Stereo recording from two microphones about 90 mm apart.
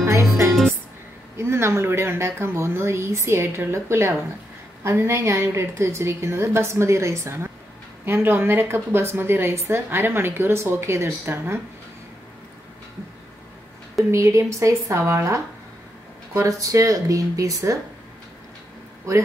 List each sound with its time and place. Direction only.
0.0 s music: 30° right (ahead or behind)
1.4 s a woman's voice: 30° right (ahead or behind)
14.1 s a woman's voice: 35° right (ahead or behind)